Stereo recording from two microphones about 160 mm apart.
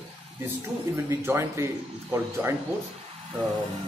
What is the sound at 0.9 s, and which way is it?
A man's voice, 15° right (ahead or behind).